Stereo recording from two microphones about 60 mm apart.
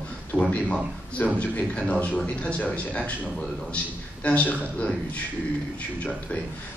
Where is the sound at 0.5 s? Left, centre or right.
Left.